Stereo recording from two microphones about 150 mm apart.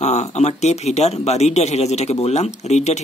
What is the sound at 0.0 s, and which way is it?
Speech, 50° left (ahead or behind).